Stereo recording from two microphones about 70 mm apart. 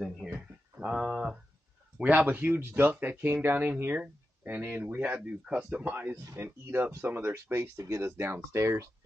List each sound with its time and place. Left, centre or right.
0.2 s a sound: right
2.0 s speech: right
5.2 s speech: centre
5.9 s speech: right
7.7 s speech: right
8.0 s speech: right